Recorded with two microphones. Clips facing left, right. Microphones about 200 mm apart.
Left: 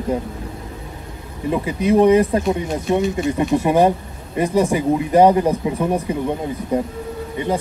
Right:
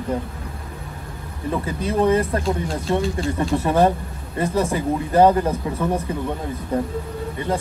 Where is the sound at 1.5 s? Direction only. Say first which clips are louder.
Left 6 dB; 15° left (ahead or behind).